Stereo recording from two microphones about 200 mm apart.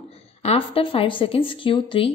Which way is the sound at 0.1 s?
30° left (ahead or behind).